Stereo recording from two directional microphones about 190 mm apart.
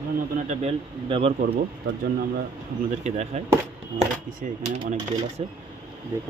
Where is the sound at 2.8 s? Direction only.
35° right (ahead or behind).